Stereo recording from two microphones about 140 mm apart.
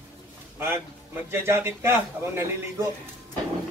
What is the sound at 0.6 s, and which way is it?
A man's voice, 15° right (ahead or behind).